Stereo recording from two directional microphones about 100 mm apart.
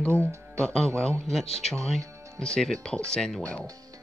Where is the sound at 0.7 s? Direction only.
5° left (ahead or behind).